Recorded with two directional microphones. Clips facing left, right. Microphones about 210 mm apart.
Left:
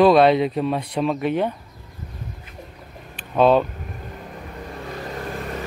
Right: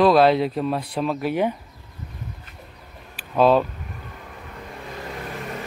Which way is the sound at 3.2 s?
Centre (ahead or behind).